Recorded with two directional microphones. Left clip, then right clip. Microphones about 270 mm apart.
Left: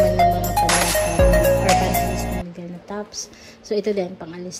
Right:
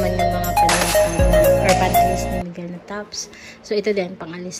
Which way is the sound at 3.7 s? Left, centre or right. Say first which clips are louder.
Right 2 dB; centre.